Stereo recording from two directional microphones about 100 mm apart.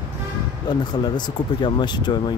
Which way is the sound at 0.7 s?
45° left (ahead or behind).